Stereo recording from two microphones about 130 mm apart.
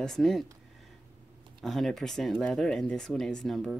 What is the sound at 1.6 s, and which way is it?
Speech, centre (ahead or behind).